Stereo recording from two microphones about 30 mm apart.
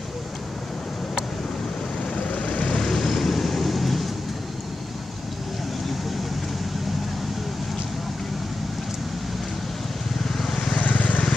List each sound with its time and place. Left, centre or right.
2.2 s vehicle: left
3.0 s vehicle: centre
10.2 s vehicle: centre
10.7 s vehicle: left